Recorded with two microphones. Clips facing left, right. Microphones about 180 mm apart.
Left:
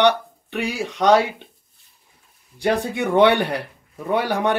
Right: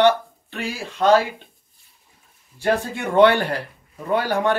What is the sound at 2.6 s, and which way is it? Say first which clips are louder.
Speech: left 1 dB; 15° left (ahead or behind).